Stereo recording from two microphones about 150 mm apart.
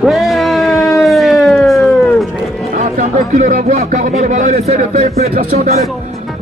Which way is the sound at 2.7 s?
50° right (ahead or behind).